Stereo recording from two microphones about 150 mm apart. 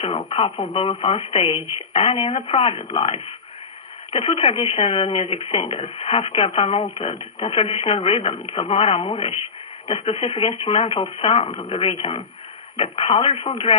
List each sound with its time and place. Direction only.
0.0 s speech: 35° left (ahead or behind)